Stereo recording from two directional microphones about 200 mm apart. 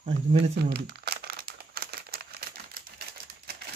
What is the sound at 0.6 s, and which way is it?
Crumpling, 55° right (ahead or behind).